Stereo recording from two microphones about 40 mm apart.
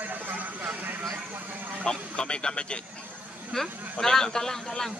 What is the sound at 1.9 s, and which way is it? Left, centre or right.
A man's voice, left.